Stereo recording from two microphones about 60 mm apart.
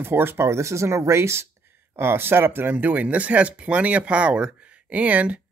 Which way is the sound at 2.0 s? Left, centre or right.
Right.